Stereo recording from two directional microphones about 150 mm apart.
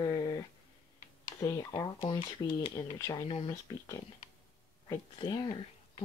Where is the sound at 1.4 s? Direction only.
25° left (ahead or behind).